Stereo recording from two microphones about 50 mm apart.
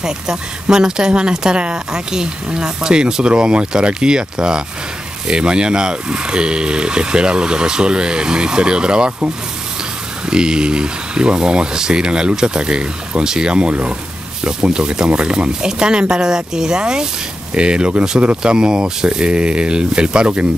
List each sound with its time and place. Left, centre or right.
0.0 s speech: centre
10.2 s speech: centre